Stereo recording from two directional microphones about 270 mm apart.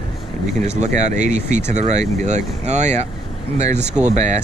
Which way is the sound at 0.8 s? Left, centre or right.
Right.